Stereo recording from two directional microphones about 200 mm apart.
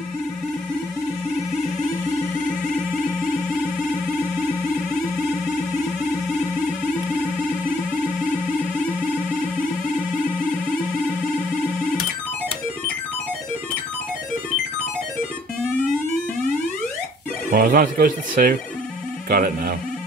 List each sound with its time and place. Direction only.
17.5 s speech: 45° right (ahead or behind)